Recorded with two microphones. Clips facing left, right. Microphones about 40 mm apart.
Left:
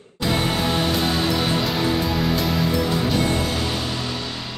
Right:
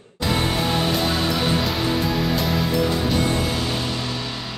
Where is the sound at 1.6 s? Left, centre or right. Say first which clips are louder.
Left 1 dB; centre.